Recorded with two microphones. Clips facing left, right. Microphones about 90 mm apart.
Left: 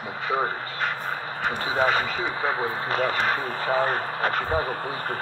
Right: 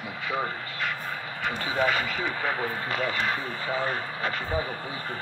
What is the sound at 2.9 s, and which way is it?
Speech, 40° left (ahead or behind).